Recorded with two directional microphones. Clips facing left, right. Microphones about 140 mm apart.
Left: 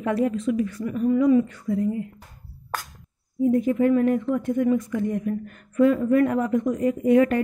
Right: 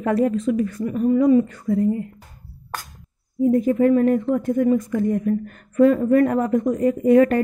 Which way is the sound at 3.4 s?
45° right (ahead or behind).